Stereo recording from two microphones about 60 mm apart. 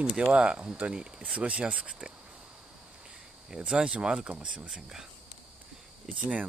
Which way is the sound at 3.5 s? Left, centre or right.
Centre.